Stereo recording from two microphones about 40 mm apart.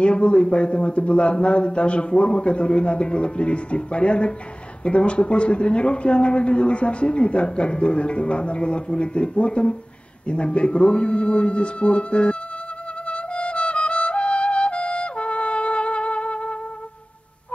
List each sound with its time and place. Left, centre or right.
0.0 s a man's voice: left
13.0 s music: left